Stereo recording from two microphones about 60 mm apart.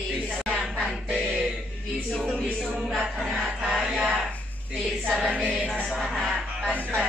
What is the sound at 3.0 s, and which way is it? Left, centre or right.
Music, centre.